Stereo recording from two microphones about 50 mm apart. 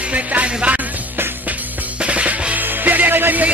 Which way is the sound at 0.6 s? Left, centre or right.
Right.